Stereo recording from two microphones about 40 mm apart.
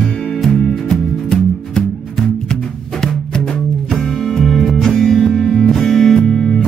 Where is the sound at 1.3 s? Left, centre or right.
Centre.